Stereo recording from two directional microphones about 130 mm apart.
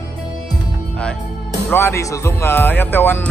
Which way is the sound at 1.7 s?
20° left (ahead or behind).